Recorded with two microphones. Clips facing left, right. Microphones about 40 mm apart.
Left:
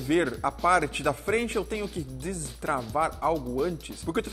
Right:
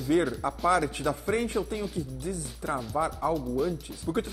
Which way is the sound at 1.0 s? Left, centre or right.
Left.